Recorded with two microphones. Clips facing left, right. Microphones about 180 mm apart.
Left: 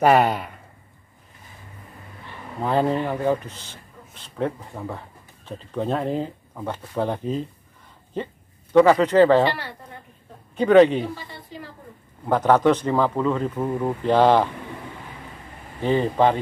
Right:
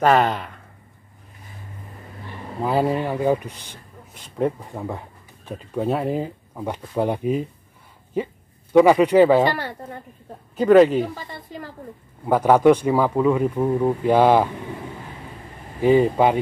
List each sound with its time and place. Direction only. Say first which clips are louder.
0.0 s speech: even; 10° left (ahead or behind)
2.6 s speech: right 1 dB; 5° right (ahead or behind)
9.4 s speech: right 1 dB; 45° right (ahead or behind)
10.5 s speech: right 1 dB; 5° right (ahead or behind)
12.3 s speech: right 3 dB; 10° right (ahead or behind)
15.8 s speech: right 3 dB; 10° right (ahead or behind)